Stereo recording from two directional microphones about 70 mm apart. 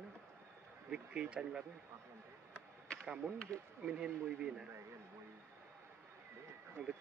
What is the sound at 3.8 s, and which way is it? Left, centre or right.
Speech, centre.